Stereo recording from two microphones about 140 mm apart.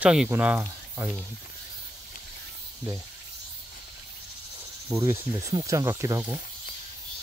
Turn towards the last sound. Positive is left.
turn(degrees=-20)  # may be behind; listen again after turning